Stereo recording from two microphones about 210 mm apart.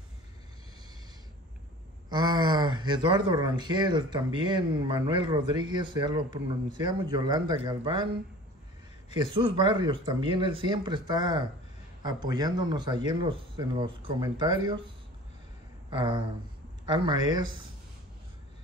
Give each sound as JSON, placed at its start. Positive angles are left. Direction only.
{"t": 2.0, "sound": "speech", "side_deg": -20}
{"t": 9.1, "sound": "speech", "side_deg": -25}
{"t": 15.9, "sound": "speech", "side_deg": -20}